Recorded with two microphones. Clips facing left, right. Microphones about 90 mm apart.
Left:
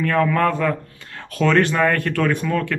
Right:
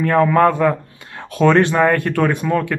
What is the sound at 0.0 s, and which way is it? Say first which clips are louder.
Speech: right 5 dB; 20° right (ahead or behind).